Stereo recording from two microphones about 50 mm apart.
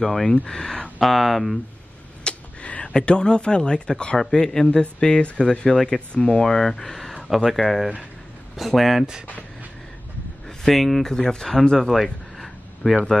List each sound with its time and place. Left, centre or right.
0.0 s speech: centre
2.2 s a sound: left
2.9 s speech: centre
10.6 s speech: centre